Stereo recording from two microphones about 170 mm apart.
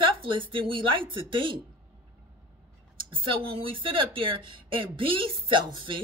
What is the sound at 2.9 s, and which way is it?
Speech, 30° right (ahead or behind).